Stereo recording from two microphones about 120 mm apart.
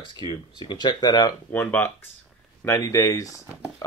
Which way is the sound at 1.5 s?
15° left (ahead or behind).